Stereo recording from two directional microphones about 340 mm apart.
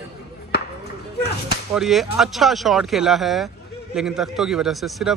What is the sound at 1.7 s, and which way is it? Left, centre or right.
A man's voice, centre.